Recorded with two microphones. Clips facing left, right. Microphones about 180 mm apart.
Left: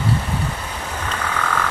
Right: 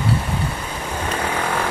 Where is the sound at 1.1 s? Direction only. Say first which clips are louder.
Right 1 dB; 30° right (ahead or behind).